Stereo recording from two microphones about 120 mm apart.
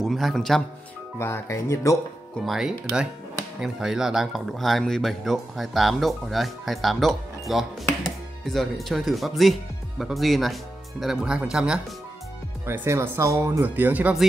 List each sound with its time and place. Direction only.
0.0 s speech: centre (ahead or behind)
1.1 s speech: 20° left (ahead or behind)
2.4 s speech: 5° right (ahead or behind)
12.6 s speech: 20° right (ahead or behind)